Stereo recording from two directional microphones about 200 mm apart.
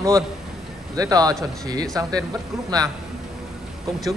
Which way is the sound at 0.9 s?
20° right (ahead or behind).